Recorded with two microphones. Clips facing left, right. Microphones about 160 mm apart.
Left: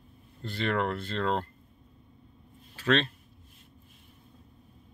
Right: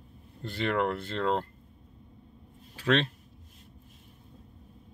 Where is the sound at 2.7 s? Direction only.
15° right (ahead or behind).